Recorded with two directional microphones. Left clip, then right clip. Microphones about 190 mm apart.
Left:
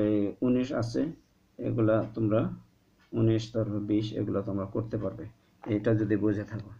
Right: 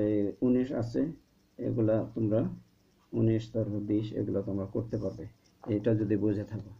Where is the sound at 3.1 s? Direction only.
35° right (ahead or behind).